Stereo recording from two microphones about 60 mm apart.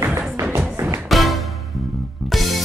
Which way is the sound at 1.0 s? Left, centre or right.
Centre.